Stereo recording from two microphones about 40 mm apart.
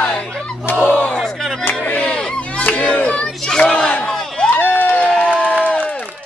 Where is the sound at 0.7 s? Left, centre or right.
Left.